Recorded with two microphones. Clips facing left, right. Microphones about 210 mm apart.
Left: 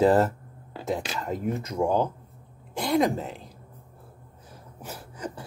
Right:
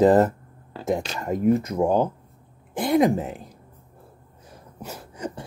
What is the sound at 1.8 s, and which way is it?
Speech, 20° right (ahead or behind).